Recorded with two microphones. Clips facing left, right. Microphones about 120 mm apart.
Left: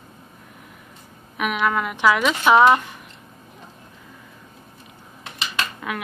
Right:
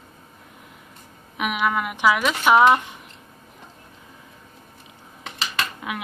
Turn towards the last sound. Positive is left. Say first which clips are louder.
# left 2 dB
turn(degrees=-15)  # may be behind; listen again after turning